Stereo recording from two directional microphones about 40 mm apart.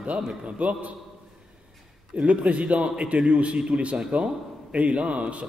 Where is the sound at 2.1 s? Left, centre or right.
Right.